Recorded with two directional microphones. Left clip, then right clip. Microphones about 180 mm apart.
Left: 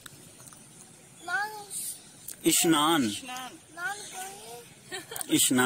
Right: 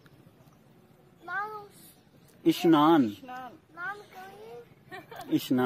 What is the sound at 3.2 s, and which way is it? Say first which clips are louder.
Speech: left 2 dB; 35° right (ahead or behind).